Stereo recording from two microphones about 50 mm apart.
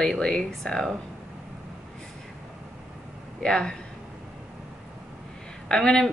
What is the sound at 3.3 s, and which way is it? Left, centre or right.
Speech, centre.